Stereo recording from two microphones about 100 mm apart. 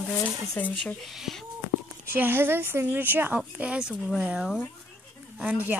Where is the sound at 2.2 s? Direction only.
20° right (ahead or behind).